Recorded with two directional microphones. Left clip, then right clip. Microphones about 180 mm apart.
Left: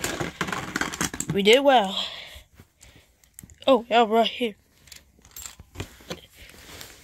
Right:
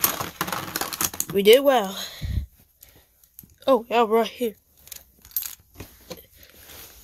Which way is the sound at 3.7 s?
15° right (ahead or behind).